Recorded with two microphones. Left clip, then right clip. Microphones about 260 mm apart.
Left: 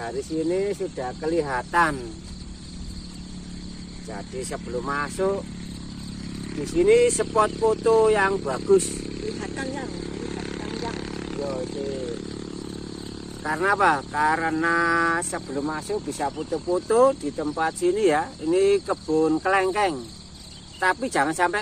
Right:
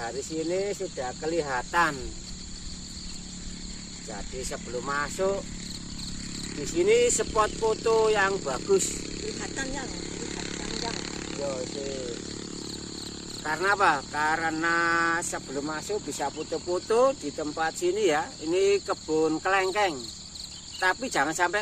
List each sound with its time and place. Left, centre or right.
0.0 s speech: centre
4.1 s speech: centre
6.6 s speech: centre
8.9 s a sound: right
10.0 s chainsaw: right
13.4 s speech: centre